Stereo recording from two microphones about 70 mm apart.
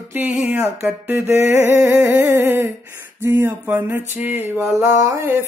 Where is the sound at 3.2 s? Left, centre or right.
Right.